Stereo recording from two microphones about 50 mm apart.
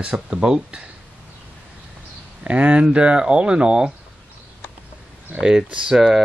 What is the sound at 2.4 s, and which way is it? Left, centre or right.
Speech, right.